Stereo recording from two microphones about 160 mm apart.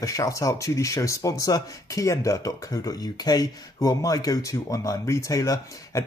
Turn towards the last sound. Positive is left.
turn(degrees=20)  # may be behind; listen again after turning